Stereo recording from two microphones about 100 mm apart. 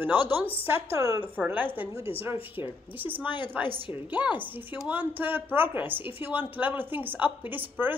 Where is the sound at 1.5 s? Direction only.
20° right (ahead or behind).